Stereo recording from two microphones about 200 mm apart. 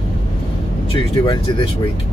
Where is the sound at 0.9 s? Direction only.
25° left (ahead or behind).